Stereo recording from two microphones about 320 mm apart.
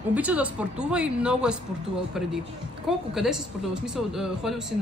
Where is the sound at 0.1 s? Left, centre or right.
Centre.